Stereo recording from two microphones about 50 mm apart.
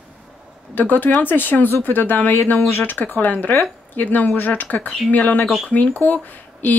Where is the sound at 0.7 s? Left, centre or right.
Left.